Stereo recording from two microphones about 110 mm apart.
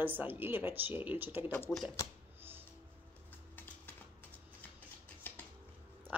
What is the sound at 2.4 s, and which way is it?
Music, 20° right (ahead or behind).